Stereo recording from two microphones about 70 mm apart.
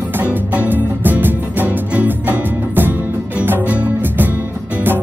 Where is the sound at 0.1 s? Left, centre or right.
Right.